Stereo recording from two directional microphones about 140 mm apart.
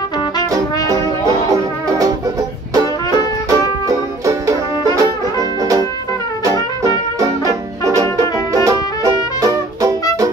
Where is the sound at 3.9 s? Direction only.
25° right (ahead or behind).